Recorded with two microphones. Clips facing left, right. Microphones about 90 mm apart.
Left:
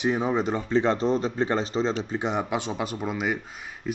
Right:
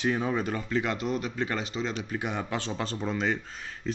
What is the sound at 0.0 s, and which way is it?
Speech, 20° left (ahead or behind).